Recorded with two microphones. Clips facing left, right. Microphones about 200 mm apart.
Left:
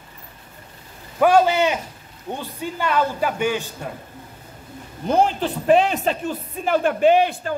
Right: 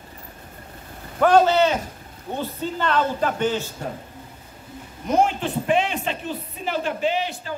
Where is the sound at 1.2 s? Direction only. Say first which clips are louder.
Even; 10° left (ahead or behind).